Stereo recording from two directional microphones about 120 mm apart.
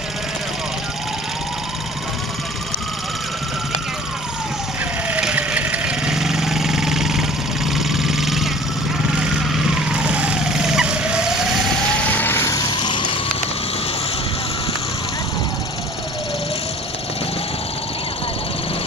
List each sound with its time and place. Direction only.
5.1 s vehicle: 10° right (ahead or behind)
12.1 s vehicle: 15° left (ahead or behind)
12.7 s a sound: 40° left (ahead or behind)